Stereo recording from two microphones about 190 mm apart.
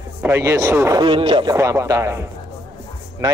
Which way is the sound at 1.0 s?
25° right (ahead or behind).